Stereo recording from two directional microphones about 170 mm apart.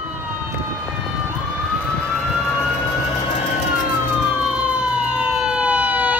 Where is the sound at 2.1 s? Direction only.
10° left (ahead or behind).